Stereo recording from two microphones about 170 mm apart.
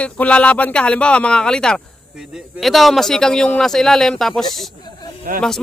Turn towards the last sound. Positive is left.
turn(degrees=-50)  # may be behind; listen again after turning